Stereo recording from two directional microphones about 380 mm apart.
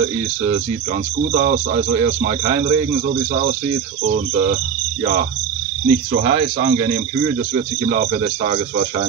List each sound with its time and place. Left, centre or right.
1.3 s speech: centre
5.9 s speech: centre